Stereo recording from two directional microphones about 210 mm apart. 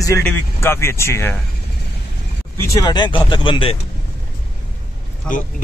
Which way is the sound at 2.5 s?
15° left (ahead or behind).